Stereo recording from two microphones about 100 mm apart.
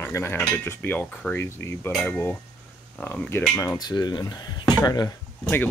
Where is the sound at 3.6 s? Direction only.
40° left (ahead or behind).